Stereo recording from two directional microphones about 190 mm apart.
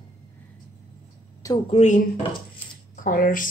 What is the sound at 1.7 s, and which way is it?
Speech, 40° left (ahead or behind).